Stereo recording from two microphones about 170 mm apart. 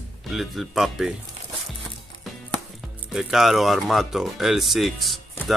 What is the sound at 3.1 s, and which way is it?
Speech, centre (ahead or behind).